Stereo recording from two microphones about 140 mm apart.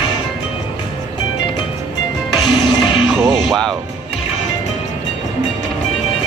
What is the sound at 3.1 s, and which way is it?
Speech, 15° right (ahead or behind).